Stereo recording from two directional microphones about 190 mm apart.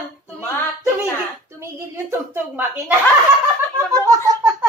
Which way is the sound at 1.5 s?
15° right (ahead or behind).